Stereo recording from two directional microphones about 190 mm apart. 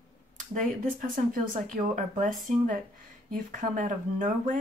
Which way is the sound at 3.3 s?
45° right (ahead or behind).